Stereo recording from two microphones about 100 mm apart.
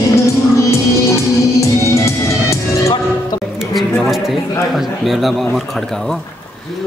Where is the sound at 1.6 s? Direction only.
30° left (ahead or behind).